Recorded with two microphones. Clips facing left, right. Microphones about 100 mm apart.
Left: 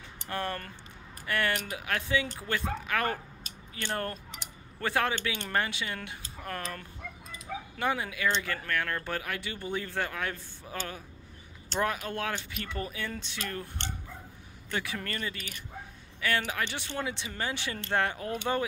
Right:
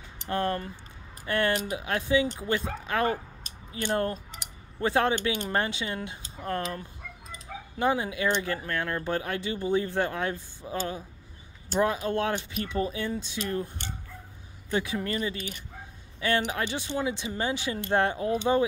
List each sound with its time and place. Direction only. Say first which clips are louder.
0.3 s speech: right 6 dB; 20° right (ahead or behind)
14.7 s speech: right 6 dB; 20° right (ahead or behind)